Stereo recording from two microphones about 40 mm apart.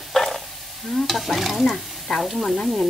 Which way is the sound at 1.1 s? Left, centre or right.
Centre.